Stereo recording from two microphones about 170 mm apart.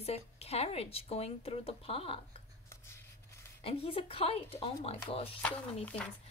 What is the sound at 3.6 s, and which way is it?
A woman's voice, 35° left (ahead or behind).